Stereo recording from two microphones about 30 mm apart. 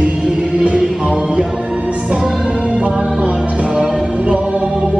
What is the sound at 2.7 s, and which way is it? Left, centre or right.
Music, right.